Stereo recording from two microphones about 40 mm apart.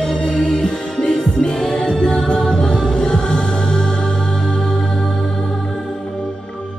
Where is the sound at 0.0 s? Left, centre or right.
Centre.